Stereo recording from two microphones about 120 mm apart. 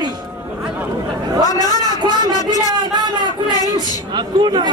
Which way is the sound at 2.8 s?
35° right (ahead or behind).